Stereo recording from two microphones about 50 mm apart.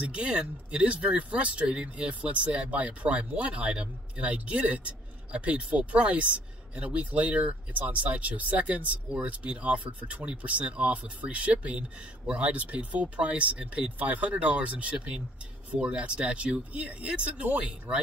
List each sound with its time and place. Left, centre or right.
0.0 s speech: right